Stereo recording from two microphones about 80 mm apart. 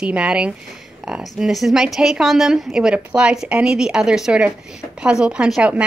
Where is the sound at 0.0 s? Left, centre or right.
Centre.